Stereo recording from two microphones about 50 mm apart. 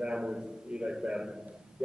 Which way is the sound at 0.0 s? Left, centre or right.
Centre.